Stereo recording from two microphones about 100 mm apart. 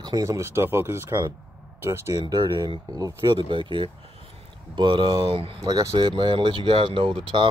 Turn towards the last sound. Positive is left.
turn(degrees=-60)  # may be behind; listen again after turning